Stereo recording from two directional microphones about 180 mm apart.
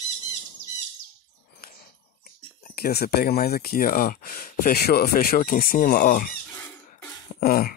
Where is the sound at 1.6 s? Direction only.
55° left (ahead or behind).